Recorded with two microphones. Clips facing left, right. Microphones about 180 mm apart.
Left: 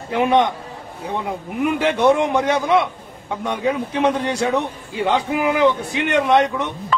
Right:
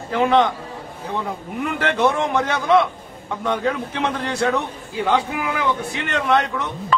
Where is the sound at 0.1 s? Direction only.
15° left (ahead or behind).